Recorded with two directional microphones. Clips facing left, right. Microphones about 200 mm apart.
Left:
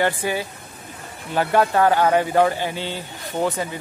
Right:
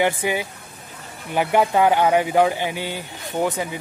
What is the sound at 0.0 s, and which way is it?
Speech, 15° right (ahead or behind).